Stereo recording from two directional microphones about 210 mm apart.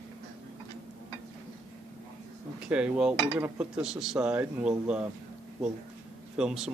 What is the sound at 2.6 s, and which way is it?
Speech, 5° right (ahead or behind).